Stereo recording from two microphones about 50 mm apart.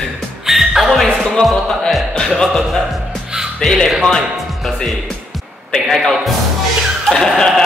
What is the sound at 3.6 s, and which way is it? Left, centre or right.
Music, centre.